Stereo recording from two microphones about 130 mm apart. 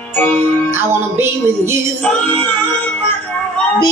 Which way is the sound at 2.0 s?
10° left (ahead or behind).